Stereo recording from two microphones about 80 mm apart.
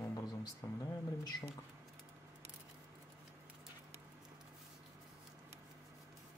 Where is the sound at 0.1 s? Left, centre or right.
Left.